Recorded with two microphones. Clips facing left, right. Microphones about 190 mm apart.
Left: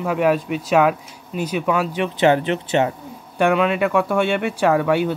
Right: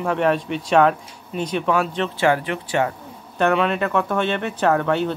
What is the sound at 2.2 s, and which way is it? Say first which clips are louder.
Speech: left 4 dB; 25° left (ahead or behind).